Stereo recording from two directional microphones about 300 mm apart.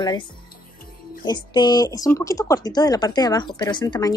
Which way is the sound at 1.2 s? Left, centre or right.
Centre.